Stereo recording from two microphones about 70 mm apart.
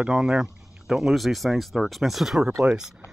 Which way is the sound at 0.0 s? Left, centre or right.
Centre.